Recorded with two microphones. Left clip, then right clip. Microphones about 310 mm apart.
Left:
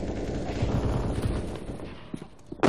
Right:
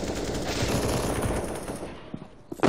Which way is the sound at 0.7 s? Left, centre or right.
Right.